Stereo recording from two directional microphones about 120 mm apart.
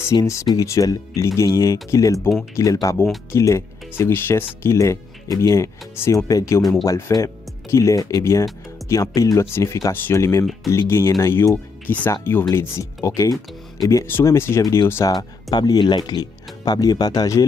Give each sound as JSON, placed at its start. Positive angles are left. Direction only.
{"t": 0.0, "sound": "speech", "side_deg": 25}
{"t": 15.5, "sound": "speech", "side_deg": 35}